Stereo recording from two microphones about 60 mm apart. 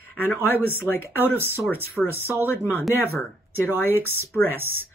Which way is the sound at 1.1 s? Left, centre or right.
Right.